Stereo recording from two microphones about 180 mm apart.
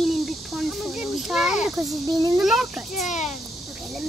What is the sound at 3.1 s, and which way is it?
Speech, 40° left (ahead or behind).